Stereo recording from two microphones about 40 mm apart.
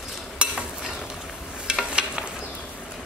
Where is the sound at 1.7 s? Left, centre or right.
Right.